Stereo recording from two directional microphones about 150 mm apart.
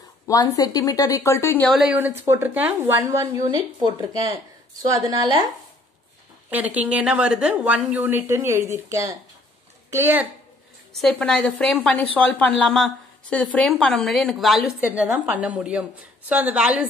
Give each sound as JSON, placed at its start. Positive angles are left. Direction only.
{"t": 0.3, "sound": "speech", "side_deg": 25}
{"t": 1.7, "sound": "a woman's voice", "side_deg": -5}
{"t": 2.0, "sound": "speech", "side_deg": -15}
{"t": 6.5, "sound": "a woman's voice", "side_deg": -10}
{"t": 10.9, "sound": "a woman's voice", "side_deg": 0}
{"t": 14.8, "sound": "a woman's voice", "side_deg": -10}